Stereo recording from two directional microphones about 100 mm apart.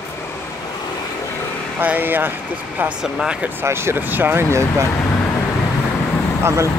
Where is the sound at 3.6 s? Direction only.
25° right (ahead or behind).